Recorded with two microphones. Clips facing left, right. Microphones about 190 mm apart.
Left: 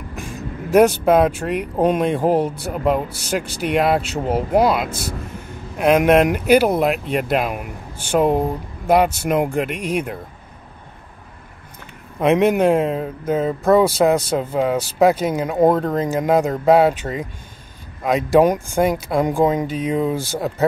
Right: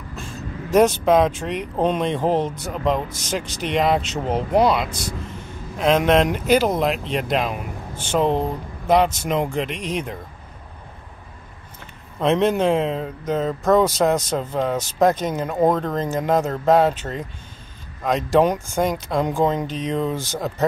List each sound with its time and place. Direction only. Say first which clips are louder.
0.1 s speech: left 2 dB; 15° left (ahead or behind)
4.8 s speech: left 3 dB; 50° left (ahead or behind)
5.8 s speech: left 3 dB; 10° left (ahead or behind)
12.2 s speech: left 3 dB; 10° left (ahead or behind)